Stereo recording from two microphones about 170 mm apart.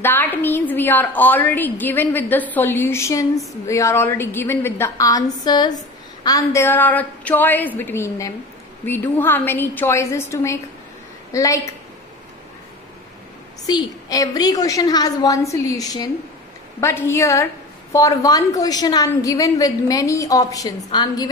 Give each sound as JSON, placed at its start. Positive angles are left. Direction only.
{"t": 0.0, "sound": "a woman's voice", "side_deg": 10}
{"t": 13.7, "sound": "a woman's voice", "side_deg": 25}